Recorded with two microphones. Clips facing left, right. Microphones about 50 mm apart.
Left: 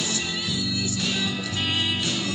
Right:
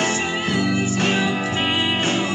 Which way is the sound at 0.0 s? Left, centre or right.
Right.